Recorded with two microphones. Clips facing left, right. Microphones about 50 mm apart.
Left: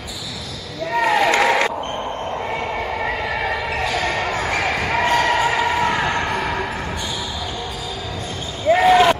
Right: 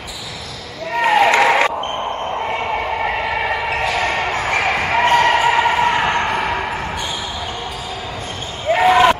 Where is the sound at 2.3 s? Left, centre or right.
Right.